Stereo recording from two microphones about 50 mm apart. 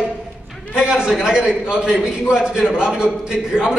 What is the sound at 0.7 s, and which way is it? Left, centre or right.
A man's voice, centre.